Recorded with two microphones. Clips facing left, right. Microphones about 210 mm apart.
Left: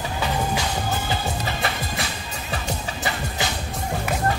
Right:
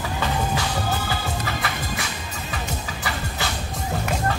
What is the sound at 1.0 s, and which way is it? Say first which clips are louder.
Music: left 1 dB; 25° left (ahead or behind).